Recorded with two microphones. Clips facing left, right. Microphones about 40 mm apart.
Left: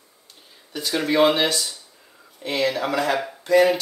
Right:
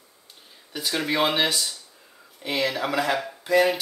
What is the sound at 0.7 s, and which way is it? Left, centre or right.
Speech, centre.